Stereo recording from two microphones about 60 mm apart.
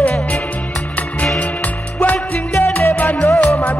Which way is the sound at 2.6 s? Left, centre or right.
Left.